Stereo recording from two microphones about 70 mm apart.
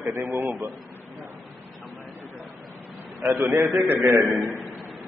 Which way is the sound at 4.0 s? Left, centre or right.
Right.